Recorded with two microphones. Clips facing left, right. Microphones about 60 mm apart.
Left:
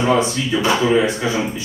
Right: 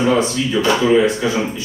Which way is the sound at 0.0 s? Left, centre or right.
Centre.